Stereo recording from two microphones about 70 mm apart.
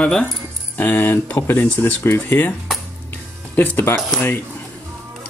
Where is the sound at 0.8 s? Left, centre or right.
Left.